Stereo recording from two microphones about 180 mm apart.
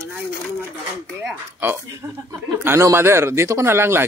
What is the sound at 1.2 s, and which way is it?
Speech, 10° right (ahead or behind).